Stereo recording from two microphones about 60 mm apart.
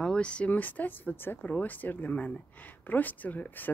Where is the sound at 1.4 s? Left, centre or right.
Left.